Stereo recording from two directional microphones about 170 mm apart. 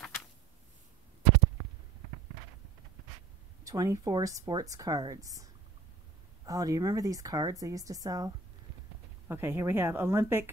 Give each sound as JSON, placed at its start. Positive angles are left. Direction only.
{"t": 3.6, "sound": "speech", "side_deg": -20}
{"t": 9.3, "sound": "speech", "side_deg": -15}